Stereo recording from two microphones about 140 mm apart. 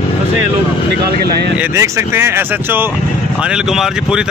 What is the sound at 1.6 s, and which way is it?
Speech, 15° right (ahead or behind).